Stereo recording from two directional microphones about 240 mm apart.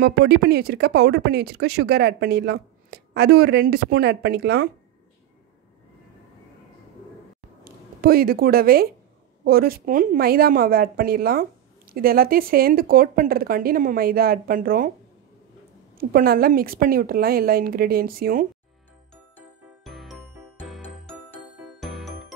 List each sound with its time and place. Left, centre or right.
0.0 s speech: right
7.6 s speech: right
16.0 s speech: right
19.3 s music: centre